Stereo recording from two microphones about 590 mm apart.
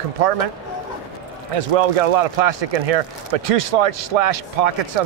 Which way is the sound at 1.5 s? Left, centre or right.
Right.